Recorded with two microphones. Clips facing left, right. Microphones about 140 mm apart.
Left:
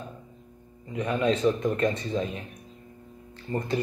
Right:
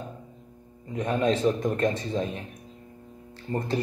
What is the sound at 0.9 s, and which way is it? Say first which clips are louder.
A man's voice: right 1 dB; 40° right (ahead or behind).